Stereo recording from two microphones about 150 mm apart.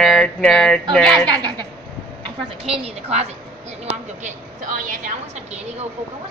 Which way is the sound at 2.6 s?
40° right (ahead or behind).